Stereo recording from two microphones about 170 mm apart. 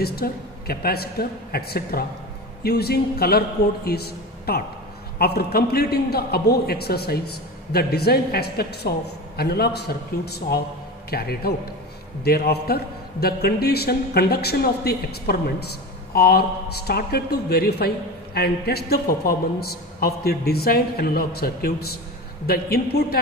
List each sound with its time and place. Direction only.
0.0 s a woman's voice: 65° left (ahead or behind)
11.1 s a woman's voice: 65° left (ahead or behind)